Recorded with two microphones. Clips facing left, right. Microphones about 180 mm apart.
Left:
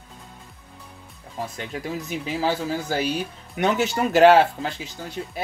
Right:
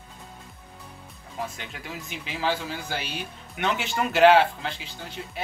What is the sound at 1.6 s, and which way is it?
Speech, 35° left (ahead or behind).